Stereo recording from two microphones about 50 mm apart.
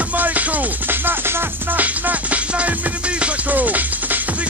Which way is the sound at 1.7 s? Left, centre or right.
Right.